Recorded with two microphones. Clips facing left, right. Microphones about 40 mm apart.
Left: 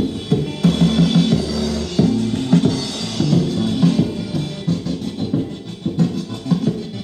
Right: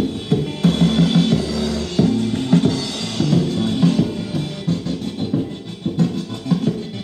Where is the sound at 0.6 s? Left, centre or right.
Right.